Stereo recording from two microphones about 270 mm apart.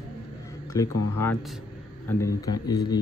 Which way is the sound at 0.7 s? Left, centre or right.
Centre.